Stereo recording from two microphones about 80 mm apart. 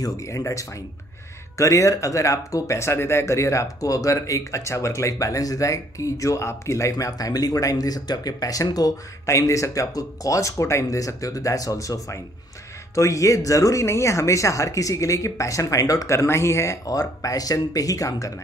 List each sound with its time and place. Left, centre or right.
0.0 s speech: left